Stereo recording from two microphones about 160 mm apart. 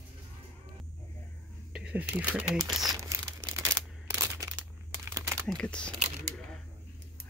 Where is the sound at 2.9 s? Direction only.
20° right (ahead or behind).